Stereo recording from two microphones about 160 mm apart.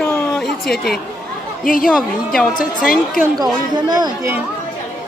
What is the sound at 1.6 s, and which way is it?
Speech, 60° left (ahead or behind).